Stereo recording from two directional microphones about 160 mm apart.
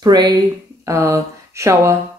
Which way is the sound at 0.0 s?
25° right (ahead or behind).